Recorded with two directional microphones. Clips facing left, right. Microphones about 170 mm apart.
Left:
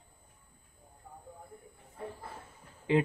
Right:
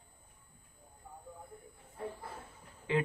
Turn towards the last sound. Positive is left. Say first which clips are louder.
# left 5 dB
turn(degrees=20)  # may be behind; listen again after turning